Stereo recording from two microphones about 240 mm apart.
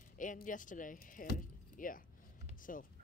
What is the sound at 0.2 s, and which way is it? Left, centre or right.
A woman's voice, left.